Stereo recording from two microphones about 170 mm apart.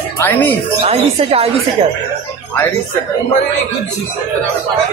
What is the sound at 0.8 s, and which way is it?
Speech, 35° right (ahead or behind).